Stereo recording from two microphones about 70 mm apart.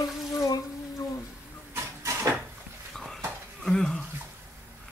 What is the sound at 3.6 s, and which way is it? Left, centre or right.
Bathtub, centre.